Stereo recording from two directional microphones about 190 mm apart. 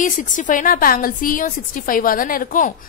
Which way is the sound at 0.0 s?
40° left (ahead or behind).